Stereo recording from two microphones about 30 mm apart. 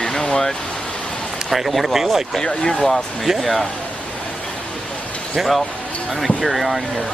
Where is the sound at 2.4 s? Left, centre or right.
Left.